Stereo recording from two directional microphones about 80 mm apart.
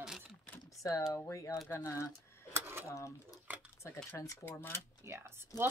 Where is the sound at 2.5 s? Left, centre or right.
Right.